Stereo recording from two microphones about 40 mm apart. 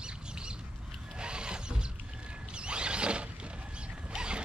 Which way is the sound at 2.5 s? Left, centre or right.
Right.